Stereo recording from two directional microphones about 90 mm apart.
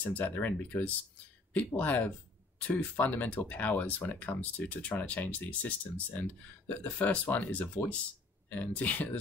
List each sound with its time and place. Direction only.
0.1 s speech: 20° left (ahead or behind)